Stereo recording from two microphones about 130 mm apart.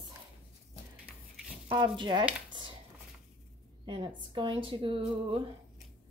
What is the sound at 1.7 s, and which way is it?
Speech, 35° right (ahead or behind).